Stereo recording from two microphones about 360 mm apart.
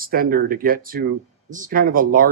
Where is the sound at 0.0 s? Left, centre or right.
Right.